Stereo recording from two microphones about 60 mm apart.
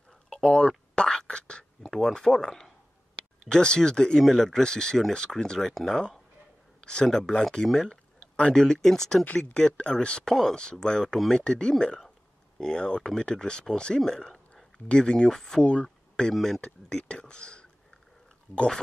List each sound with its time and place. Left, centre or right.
0.3 s a sound: centre
1.9 s speech: centre
6.8 s a sound: centre
7.1 s speech: centre
16.3 s speech: centre
16.6 s speech: centre